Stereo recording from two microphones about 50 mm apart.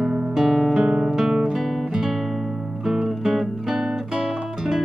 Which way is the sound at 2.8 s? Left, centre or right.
Centre.